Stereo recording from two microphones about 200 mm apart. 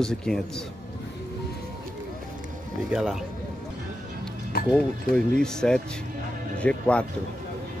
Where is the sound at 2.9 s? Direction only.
5° right (ahead or behind).